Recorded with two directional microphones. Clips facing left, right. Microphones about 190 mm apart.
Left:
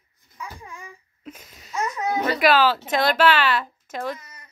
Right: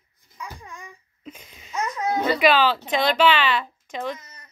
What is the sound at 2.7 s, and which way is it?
Speech, 10° left (ahead or behind).